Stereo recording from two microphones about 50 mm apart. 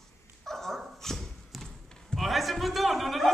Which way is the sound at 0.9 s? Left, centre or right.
Centre.